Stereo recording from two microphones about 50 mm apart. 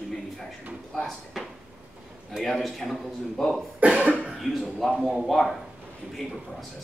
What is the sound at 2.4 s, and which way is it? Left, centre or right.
A man's voice, centre.